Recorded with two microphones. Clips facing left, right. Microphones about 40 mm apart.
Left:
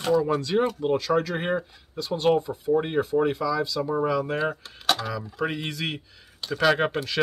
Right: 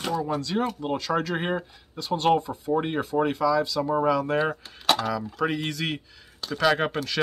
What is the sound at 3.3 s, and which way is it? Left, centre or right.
Speech, centre.